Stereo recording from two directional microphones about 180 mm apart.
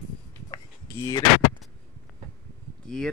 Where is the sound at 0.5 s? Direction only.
20° left (ahead or behind).